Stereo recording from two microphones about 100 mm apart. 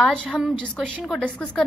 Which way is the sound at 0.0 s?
10° left (ahead or behind).